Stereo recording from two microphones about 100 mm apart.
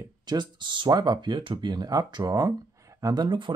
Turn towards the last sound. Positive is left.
turn(degrees=-55)  # may be behind; listen again after turning